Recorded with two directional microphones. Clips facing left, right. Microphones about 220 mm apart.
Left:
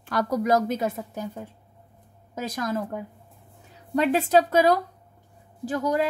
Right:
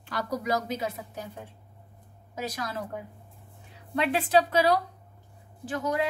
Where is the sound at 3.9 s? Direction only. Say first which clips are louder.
Left 4 dB; 45° left (ahead or behind).